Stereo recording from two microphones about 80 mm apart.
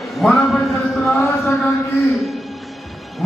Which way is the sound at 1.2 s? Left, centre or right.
Left.